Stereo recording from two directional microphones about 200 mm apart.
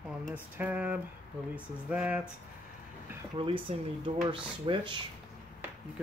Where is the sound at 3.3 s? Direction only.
25° right (ahead or behind).